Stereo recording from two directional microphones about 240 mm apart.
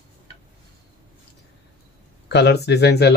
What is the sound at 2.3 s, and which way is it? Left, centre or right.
Speech, left.